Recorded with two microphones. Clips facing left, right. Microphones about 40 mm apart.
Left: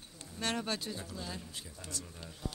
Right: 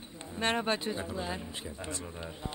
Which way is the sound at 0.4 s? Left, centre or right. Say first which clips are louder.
Right 6 dB; right.